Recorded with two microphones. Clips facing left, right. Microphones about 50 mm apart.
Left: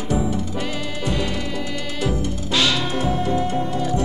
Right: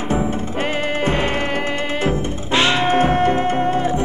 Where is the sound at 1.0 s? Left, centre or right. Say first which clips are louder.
Right 4 dB; right.